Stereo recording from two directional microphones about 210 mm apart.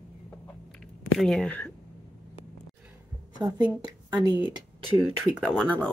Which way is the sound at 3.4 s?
20° right (ahead or behind).